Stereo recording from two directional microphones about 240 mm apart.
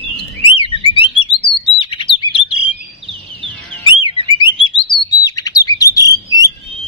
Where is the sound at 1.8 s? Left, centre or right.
Left.